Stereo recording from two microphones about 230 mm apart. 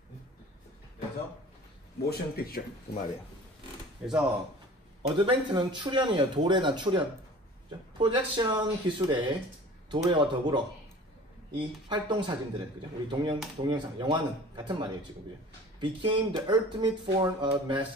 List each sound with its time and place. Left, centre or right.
2.0 s speech: left
4.0 s speech: centre
5.0 s speech: right